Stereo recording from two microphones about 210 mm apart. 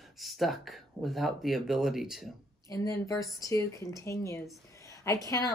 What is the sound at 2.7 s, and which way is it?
Speech, 15° left (ahead or behind).